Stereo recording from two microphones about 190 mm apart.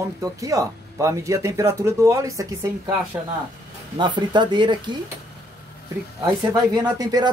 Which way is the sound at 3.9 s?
25° right (ahead or behind).